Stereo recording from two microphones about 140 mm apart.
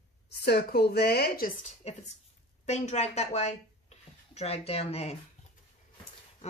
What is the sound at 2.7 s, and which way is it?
Speech, 55° left (ahead or behind).